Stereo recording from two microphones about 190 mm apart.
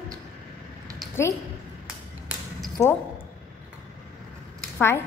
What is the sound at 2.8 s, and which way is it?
Speech, 15° left (ahead or behind).